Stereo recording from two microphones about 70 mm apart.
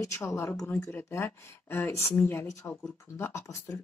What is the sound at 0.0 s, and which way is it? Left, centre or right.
Speech, left.